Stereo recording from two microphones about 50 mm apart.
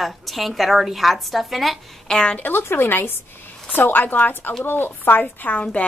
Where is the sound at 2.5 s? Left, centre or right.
Left.